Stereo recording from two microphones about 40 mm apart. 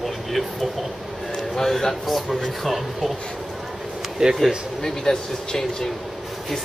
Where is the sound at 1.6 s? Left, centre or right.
Centre.